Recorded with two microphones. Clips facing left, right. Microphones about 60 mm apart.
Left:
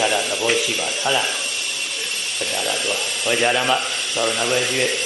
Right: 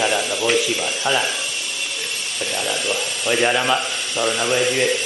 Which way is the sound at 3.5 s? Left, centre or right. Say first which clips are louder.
Even; centre.